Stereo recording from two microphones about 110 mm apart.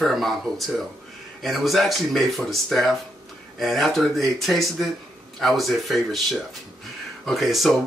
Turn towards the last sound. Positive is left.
turn(degrees=0)  # may be behind; listen again after turning